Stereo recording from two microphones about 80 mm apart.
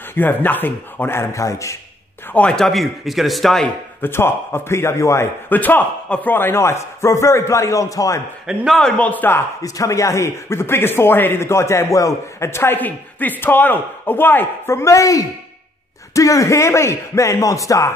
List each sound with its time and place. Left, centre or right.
0.1 s speech: left
2.3 s speech: centre
2.6 s a man's voice: centre
3.6 s speech: left
5.5 s speech: left
6.3 s speech: left
8.7 s speech: centre
9.6 s speech: left